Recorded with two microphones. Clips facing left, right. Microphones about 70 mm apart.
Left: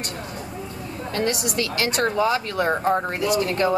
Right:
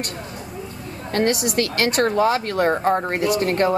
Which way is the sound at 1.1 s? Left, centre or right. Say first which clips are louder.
Right 5 dB; right.